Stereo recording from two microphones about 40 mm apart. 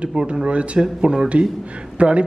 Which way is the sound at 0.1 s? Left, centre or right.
Centre.